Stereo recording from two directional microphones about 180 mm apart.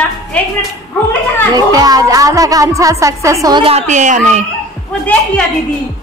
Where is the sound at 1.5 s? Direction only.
20° right (ahead or behind); by 4.5 s 40° right (ahead or behind).